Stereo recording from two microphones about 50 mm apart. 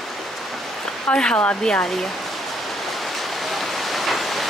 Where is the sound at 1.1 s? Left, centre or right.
Centre.